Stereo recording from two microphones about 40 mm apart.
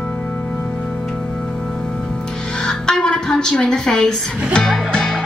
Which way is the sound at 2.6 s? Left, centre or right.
Centre.